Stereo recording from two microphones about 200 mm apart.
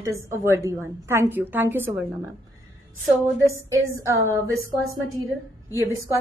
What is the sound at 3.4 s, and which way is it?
Speech, 15° right (ahead or behind).